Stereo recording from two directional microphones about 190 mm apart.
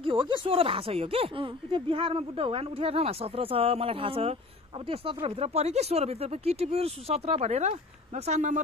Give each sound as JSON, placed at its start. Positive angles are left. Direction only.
{"t": 0.0, "sound": "speech", "side_deg": -25}